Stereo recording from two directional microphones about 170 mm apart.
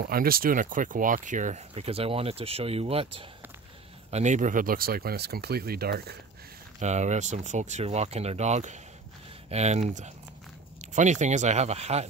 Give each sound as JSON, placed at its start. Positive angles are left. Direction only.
{"t": 0.0, "sound": "speech", "side_deg": -60}
{"t": 1.7, "sound": "speech", "side_deg": -35}
{"t": 4.1, "sound": "speech", "side_deg": -45}
{"t": 6.8, "sound": "speech", "side_deg": -45}